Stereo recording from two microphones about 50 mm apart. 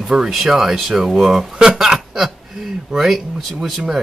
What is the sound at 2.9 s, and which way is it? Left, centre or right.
Speech, centre.